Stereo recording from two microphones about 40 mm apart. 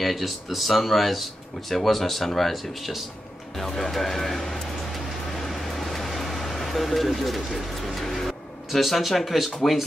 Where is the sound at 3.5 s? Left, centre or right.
Centre.